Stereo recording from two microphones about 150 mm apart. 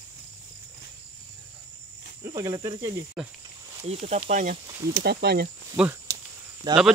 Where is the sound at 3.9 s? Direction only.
40° right (ahead or behind).